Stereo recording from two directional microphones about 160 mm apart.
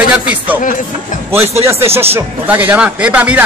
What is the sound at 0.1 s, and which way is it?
Speech, 10° right (ahead or behind).